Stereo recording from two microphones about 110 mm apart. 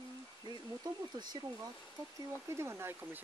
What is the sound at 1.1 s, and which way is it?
Speech, 40° right (ahead or behind).